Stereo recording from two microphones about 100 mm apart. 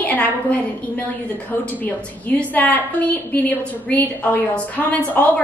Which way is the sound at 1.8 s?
15° left (ahead or behind).